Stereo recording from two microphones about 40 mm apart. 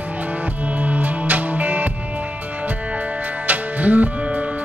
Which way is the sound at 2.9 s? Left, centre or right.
Right.